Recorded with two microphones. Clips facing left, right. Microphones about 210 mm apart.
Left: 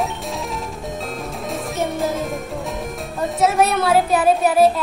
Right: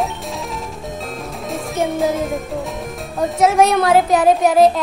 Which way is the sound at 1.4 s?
Centre (ahead or behind).